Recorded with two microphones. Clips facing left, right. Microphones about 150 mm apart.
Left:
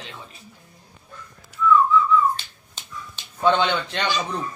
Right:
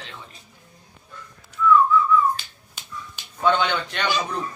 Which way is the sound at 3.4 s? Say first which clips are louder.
Left 1 dB; 30° left (ahead or behind).